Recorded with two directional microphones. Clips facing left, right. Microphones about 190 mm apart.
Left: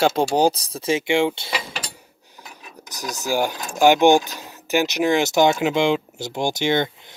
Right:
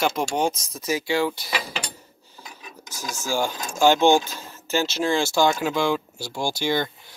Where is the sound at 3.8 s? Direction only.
15° left (ahead or behind).